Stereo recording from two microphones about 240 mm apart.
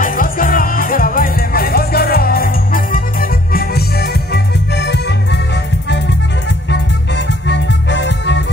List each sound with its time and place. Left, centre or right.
0.0 s music: left
7.4 s music: left